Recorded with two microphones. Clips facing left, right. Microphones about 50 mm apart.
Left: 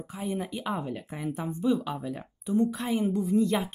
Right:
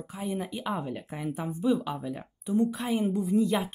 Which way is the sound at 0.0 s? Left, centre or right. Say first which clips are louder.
Left 1 dB; centre.